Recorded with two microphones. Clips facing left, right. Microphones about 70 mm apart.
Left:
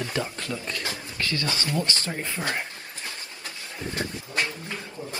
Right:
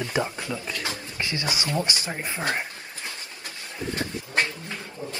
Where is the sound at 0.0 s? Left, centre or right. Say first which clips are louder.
Right 3 dB; right.